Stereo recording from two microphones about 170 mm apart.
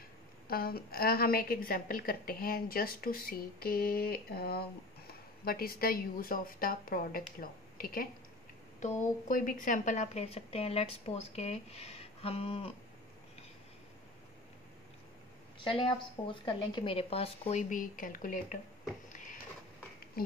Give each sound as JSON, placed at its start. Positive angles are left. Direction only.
{"t": 0.5, "sound": "a woman's voice", "side_deg": 60}
{"t": 15.6, "sound": "a woman's voice", "side_deg": 30}